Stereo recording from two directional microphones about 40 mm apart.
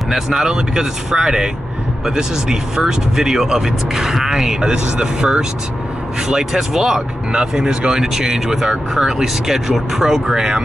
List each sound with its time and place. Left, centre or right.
0.1 s speech: centre